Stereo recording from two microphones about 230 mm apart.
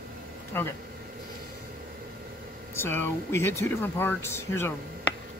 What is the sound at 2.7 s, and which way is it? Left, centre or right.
Speech, centre.